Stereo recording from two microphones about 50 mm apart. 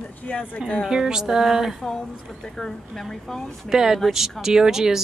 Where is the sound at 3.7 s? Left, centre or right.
Centre.